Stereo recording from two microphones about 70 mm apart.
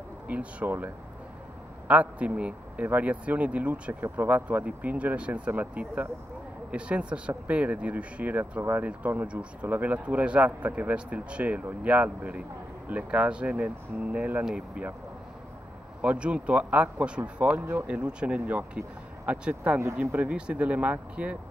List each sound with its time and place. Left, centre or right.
0.3 s speech: right
16.0 s speech: centre